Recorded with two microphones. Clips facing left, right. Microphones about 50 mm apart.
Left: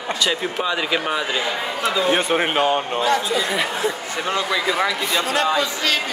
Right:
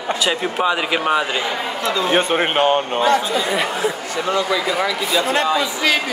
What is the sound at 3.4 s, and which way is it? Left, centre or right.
Speech, centre.